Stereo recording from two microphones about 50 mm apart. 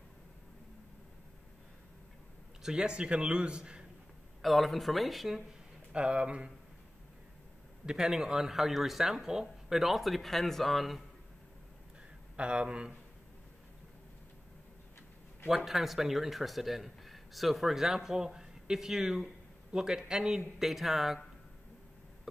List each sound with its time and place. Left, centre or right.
2.6 s a man's voice: centre
4.4 s speech: centre
5.9 s a man's voice: right
7.8 s speech: centre
12.4 s a man's voice: right
15.4 s speech: centre